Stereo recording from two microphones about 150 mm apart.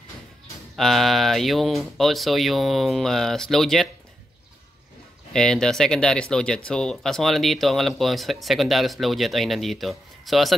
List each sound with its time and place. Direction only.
0.7 s speech: centre (ahead or behind)
5.3 s speech: 5° left (ahead or behind)